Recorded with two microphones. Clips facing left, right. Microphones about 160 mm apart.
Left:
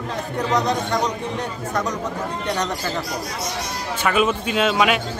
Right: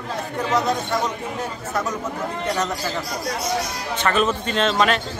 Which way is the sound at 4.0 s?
10° left (ahead or behind).